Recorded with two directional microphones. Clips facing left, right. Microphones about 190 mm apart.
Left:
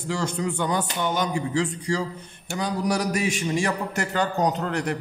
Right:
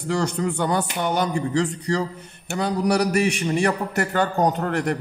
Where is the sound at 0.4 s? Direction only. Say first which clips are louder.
Right 3 dB; 50° right (ahead or behind).